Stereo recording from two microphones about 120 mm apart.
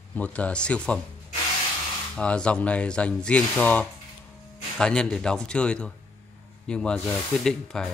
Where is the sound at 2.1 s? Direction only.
10° left (ahead or behind).